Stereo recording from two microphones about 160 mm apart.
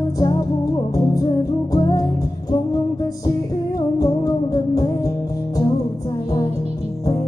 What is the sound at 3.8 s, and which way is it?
Music, 25° left (ahead or behind).